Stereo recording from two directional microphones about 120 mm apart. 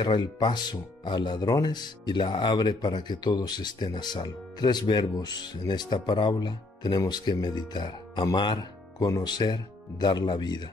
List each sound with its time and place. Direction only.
0.0 s speech: 40° left (ahead or behind)